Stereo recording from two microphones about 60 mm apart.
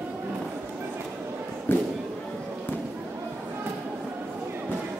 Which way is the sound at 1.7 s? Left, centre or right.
Left.